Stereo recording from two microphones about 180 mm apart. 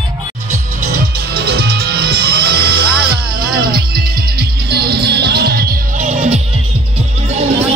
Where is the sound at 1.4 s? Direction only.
60° right (ahead or behind).